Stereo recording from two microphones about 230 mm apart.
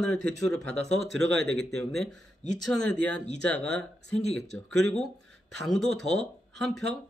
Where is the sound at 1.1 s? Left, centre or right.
Right.